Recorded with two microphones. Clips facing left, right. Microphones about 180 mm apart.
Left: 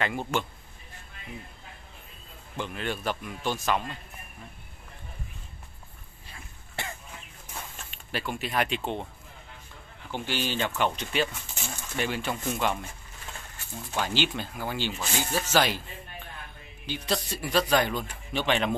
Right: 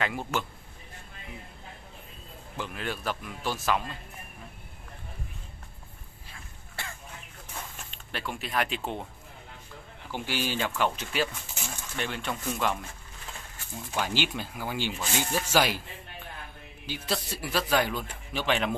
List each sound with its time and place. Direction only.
0.0 s speech: centre (ahead or behind)
2.5 s speech: 5° right (ahead or behind)
8.1 s speech: centre (ahead or behind)
10.1 s speech: 10° right (ahead or behind)
13.9 s speech: 10° right (ahead or behind)
16.8 s speech: 5° right (ahead or behind)